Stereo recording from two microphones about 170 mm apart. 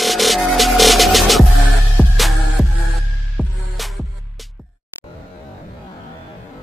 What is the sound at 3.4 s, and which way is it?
Music, centre (ahead or behind).